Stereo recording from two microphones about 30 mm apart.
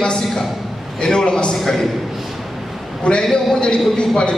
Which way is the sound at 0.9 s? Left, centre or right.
Left.